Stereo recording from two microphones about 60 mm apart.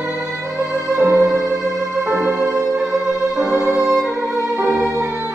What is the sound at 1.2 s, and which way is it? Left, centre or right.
Music, right.